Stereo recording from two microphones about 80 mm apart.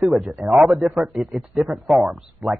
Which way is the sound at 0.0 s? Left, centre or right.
Centre.